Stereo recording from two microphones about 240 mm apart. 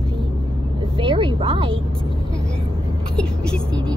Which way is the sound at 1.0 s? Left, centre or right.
Right.